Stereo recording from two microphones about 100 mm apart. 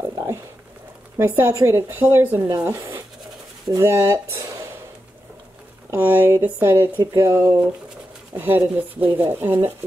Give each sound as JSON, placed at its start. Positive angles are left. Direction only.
{"t": 0.0, "sound": "a sound", "side_deg": -30}
{"t": 1.1, "sound": "speech", "side_deg": -25}
{"t": 1.5, "sound": "speech", "side_deg": -35}
{"t": 5.9, "sound": "speech", "side_deg": -20}
{"t": 7.0, "sound": "a sound", "side_deg": -30}
{"t": 8.4, "sound": "speech", "side_deg": -20}